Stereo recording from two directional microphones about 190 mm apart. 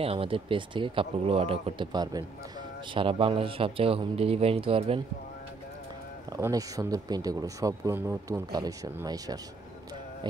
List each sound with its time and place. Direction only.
0.0 s speech: 30° right (ahead or behind)
6.3 s speech: 20° right (ahead or behind)